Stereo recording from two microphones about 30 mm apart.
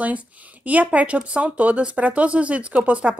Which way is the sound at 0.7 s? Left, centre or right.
Right.